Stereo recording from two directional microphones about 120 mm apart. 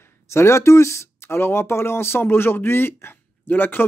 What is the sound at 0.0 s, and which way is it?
Speech, 20° left (ahead or behind).